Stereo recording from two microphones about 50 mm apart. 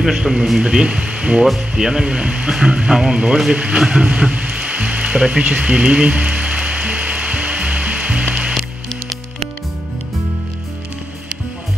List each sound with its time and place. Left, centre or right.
0.0 s speech: centre
1.4 s speech: centre
3.5 s frying: centre
5.5 s music: right